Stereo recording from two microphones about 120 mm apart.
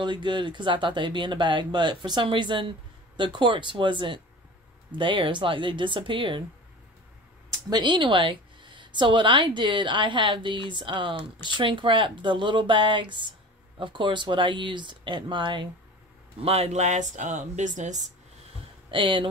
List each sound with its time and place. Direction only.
0.0 s a woman's voice: 40° right (ahead or behind)
7.7 s a woman's voice: 40° right (ahead or behind)
16.3 s speech: 60° right (ahead or behind); by 18.0 s 90° right
18.9 s a woman's voice: 45° right (ahead or behind)